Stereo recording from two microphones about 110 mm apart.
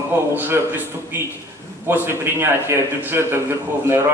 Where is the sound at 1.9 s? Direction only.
20° right (ahead or behind).